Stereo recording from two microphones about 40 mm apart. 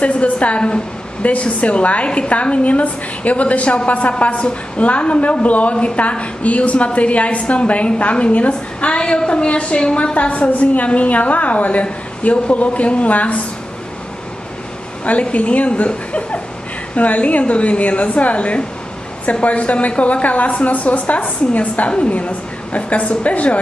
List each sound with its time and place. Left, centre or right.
0.0 s a woman's voice: left
15.0 s a woman's voice: left